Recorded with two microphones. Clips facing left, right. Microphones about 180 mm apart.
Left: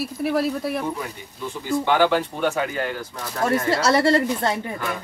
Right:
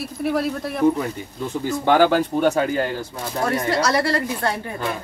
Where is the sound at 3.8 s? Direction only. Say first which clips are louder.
Left 4 dB; 25° left (ahead or behind).